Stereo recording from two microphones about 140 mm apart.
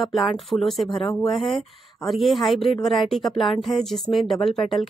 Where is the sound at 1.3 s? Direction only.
Centre (ahead or behind).